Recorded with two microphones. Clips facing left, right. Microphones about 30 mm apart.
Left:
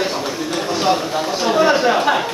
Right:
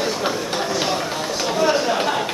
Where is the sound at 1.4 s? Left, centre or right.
Left.